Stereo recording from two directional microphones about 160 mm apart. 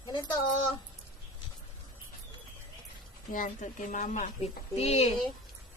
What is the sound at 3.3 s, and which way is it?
Speech, 55° left (ahead or behind).